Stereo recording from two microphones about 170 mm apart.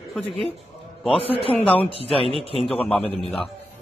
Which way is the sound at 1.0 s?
35° left (ahead or behind).